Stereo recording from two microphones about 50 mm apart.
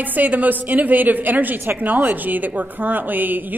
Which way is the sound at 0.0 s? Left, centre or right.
Right.